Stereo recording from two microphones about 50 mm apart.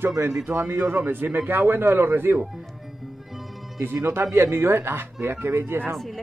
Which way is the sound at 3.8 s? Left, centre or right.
Right.